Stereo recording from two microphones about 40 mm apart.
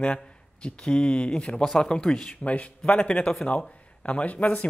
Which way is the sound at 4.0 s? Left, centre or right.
Left.